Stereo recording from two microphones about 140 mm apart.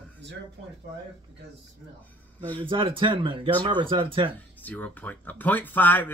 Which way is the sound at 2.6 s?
40° right (ahead or behind).